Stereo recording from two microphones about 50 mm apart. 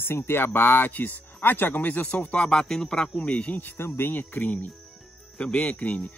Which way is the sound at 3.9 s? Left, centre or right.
Left.